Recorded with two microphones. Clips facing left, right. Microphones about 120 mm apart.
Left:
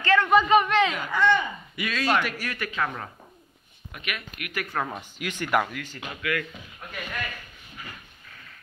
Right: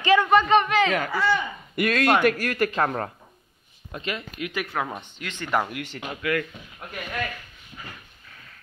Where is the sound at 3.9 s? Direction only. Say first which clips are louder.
Right 4 dB; 30° right (ahead or behind).